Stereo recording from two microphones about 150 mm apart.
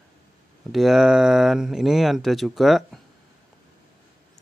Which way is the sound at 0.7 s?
Centre (ahead or behind).